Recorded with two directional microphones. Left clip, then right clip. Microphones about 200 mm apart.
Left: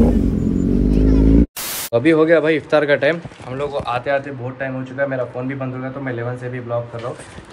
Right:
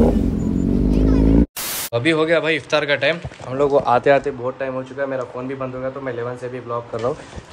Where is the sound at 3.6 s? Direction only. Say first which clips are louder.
Right 6 dB; 40° right (ahead or behind).